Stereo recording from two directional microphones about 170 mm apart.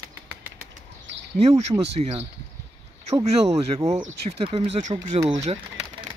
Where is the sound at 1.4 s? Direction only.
40° right (ahead or behind).